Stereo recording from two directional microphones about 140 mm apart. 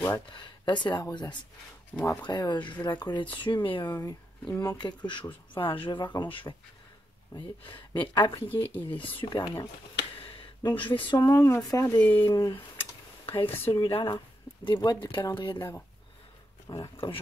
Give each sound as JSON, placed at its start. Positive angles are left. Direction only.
{"t": 0.3, "sound": "speech", "side_deg": 35}
{"t": 10.2, "sound": "a sound", "side_deg": 40}
{"t": 10.9, "sound": "speech", "side_deg": 35}
{"t": 13.2, "sound": "speech", "side_deg": 40}
{"t": 13.7, "sound": "speech", "side_deg": 25}
{"t": 16.8, "sound": "speech", "side_deg": 40}